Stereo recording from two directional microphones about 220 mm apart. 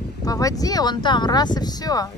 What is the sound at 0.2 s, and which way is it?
Speech, 15° left (ahead or behind).